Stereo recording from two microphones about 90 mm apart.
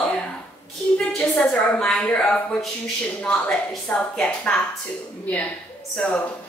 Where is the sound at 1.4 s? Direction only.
10° left (ahead or behind).